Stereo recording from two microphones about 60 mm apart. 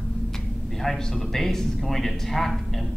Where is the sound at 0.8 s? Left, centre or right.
Centre.